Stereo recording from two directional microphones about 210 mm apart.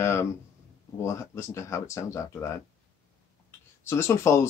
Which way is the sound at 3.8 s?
10° left (ahead or behind).